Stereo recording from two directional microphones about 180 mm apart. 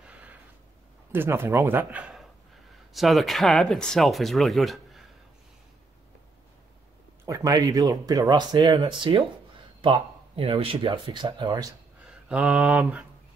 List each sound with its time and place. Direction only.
0.0 s a sound: 10° right (ahead or behind)
1.1 s speech: 10° right (ahead or behind)
7.2 s speech: 20° right (ahead or behind)
12.1 s mantra: 5° right (ahead or behind)